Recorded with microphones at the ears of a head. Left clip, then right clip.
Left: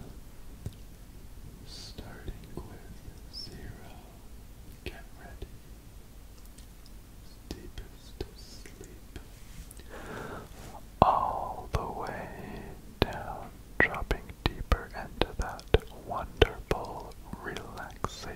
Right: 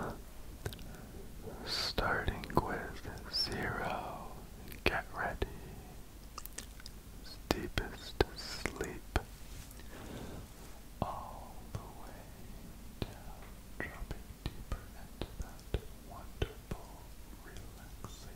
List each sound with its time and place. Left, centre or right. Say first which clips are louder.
1.4 s whispering: right 11 dB; right
7.4 s whispering: right 10 dB; right
9.9 s a sound: left 9 dB; left